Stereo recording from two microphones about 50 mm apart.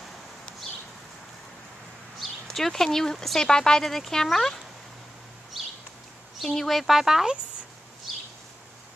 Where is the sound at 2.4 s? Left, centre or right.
Centre.